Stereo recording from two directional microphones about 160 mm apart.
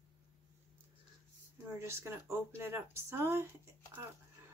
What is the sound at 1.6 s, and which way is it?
Speech, 15° right (ahead or behind).